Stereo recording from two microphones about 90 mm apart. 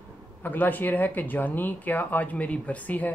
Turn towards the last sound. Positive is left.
turn(degrees=20)  # may be behind; listen again after turning